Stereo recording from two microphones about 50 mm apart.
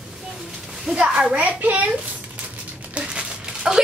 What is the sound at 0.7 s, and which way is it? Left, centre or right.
A child's voice, centre.